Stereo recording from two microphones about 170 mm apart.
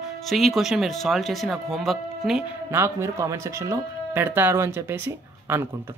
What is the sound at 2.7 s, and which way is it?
Speech, 15° right (ahead or behind).